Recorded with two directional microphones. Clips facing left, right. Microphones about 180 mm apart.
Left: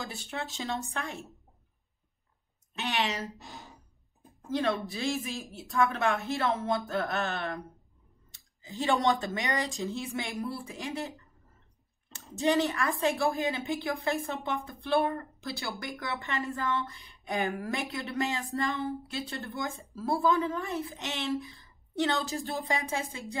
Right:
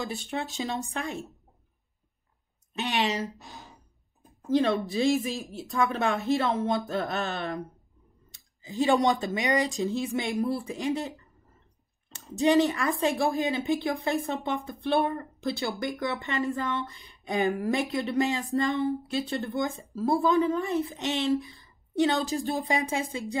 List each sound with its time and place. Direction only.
0.0 s a woman's voice: 20° right (ahead or behind)
2.8 s speech: 20° right (ahead or behind)
3.3 s speech: centre (ahead or behind)
4.6 s speech: 20° right (ahead or behind)
12.4 s a woman's voice: 20° right (ahead or behind)